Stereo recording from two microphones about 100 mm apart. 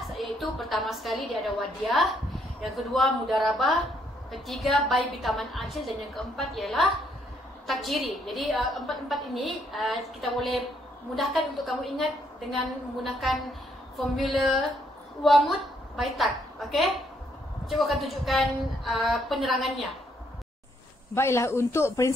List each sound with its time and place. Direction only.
0.0 s a woman's voice: centre (ahead or behind)
21.1 s speech: 25° left (ahead or behind)